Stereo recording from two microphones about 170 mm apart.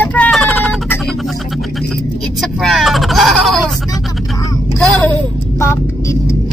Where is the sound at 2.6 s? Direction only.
Centre (ahead or behind).